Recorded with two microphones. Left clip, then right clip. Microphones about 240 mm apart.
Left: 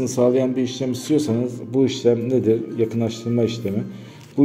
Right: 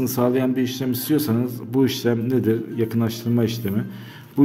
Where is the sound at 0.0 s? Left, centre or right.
Centre.